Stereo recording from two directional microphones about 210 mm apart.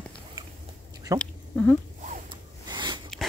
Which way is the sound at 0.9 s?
15° right (ahead or behind).